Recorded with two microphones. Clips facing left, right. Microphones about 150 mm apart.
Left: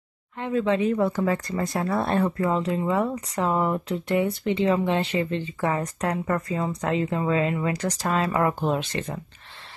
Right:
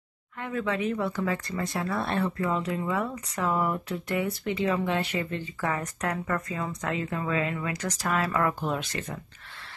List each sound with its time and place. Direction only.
0.4 s a woman's voice: 25° left (ahead or behind)